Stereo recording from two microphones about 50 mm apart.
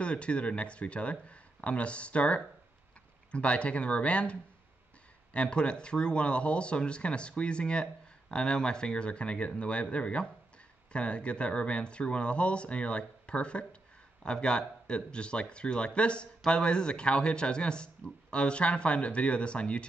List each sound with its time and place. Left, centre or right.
0.0 s speech: left